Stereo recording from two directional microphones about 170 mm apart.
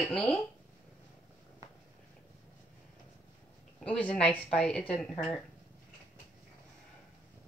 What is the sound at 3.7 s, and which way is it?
Speech, 5° left (ahead or behind).